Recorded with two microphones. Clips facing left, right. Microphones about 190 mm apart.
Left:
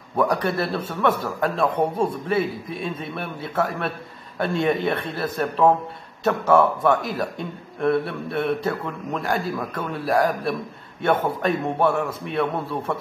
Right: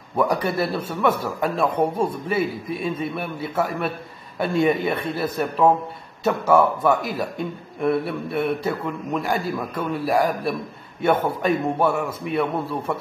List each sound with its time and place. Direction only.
0.1 s a man's voice: 5° right (ahead or behind)